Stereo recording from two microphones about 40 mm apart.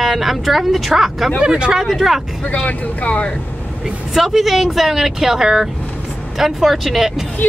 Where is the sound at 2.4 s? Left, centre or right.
Left.